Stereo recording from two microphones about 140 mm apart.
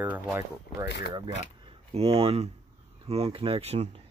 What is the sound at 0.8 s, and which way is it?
Speech, 35° right (ahead or behind).